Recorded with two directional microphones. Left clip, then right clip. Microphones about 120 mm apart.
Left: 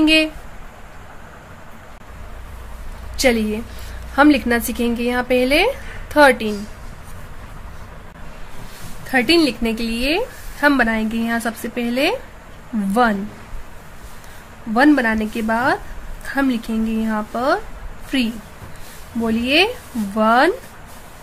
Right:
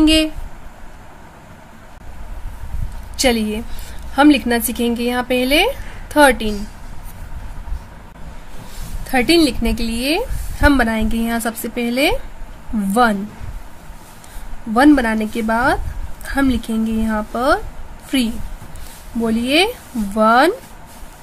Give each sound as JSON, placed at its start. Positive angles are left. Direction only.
{"t": 0.0, "sound": "speech", "side_deg": -30}
{"t": 3.2, "sound": "a woman's voice", "side_deg": -20}
{"t": 9.1, "sound": "a woman's voice", "side_deg": -35}
{"t": 14.7, "sound": "a woman's voice", "side_deg": -30}
{"t": 19.4, "sound": "a woman's voice", "side_deg": -30}